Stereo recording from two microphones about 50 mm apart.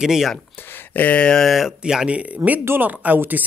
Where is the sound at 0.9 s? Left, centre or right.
Left.